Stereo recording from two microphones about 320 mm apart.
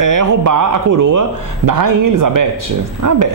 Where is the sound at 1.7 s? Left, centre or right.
Right.